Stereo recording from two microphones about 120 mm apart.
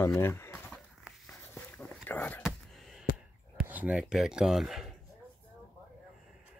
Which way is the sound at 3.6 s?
15° right (ahead or behind).